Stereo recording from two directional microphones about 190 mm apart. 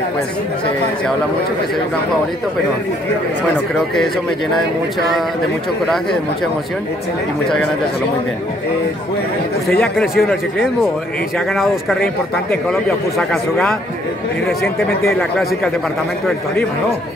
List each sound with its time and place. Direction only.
5.9 s a man's voice: centre (ahead or behind)
9.7 s a man's voice: centre (ahead or behind)